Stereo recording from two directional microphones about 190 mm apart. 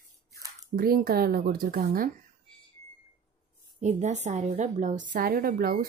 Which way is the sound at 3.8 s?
35° right (ahead or behind).